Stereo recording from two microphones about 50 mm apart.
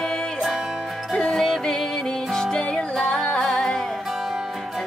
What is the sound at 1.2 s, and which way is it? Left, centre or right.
Music, centre.